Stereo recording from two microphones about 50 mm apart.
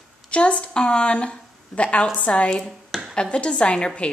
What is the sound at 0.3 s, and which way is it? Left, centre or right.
A woman's voice, left.